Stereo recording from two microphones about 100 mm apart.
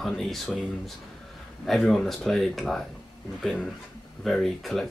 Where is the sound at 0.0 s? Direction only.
5° left (ahead or behind).